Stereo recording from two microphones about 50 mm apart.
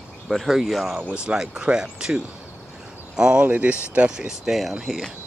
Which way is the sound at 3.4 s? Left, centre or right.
Right.